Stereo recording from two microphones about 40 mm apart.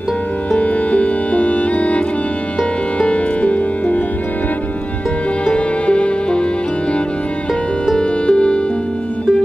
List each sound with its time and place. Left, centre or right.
0.5 s music: left
5.4 s music: left
8.3 s music: left